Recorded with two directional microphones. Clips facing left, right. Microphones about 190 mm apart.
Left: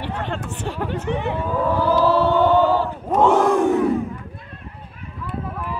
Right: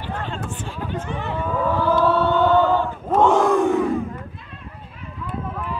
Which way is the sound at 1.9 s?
10° left (ahead or behind).